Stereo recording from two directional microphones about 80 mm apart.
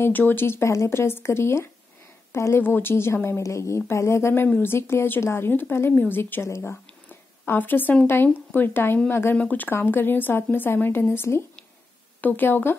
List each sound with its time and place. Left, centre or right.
0.0 s a woman's voice: left
6.6 s a sound: left
8.1 s a woman's voice: left